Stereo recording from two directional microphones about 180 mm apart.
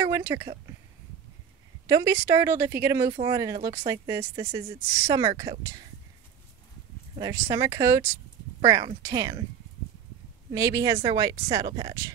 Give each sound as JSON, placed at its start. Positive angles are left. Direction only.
{"t": 0.0, "sound": "a woman's voice", "side_deg": -15}
{"t": 1.9, "sound": "a woman's voice", "side_deg": -15}
{"t": 7.2, "sound": "a woman's voice", "side_deg": -15}
{"t": 10.5, "sound": "a woman's voice", "side_deg": -15}